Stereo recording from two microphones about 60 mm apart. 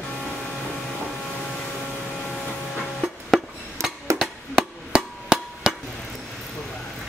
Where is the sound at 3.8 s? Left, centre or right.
Right.